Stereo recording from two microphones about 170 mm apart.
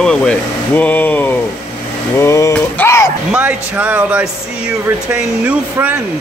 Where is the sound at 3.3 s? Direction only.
10° right (ahead or behind).